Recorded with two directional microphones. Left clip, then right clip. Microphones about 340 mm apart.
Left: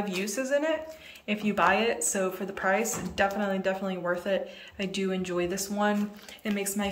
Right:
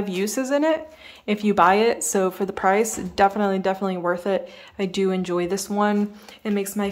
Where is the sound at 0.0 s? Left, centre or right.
Centre.